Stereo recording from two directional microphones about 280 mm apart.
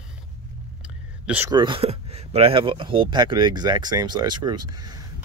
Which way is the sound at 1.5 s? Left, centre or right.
Centre.